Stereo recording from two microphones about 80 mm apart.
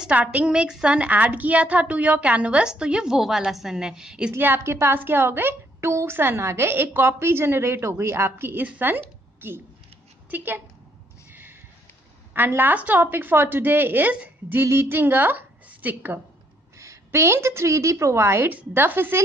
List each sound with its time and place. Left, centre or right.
0.2 s a woman's voice: centre
4.6 s a woman's voice: right
11.2 s a sound: right
12.4 s a woman's voice: right
16.7 s a woman's voice: right